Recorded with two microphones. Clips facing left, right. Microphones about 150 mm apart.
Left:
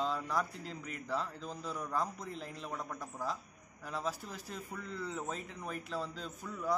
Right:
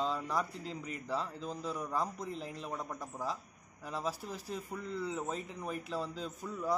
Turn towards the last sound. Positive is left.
turn(degrees=-5)  # may be behind; listen again after turning